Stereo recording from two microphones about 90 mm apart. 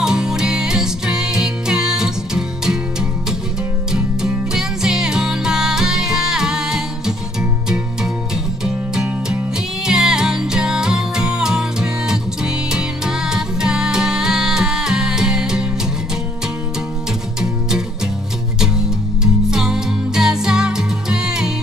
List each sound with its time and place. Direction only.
0.0 s music: 5° right (ahead or behind)
3.9 s music: 5° right (ahead or behind)
8.6 s music: 5° right (ahead or behind)
17.4 s music: 5° right (ahead or behind)